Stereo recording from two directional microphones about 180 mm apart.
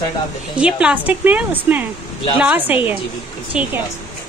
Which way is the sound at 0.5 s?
5° right (ahead or behind).